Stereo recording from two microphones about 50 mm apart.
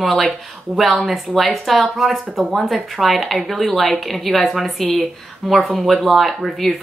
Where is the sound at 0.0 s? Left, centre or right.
Centre.